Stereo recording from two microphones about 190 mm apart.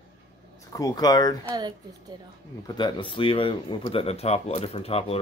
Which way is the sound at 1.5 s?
20° right (ahead or behind).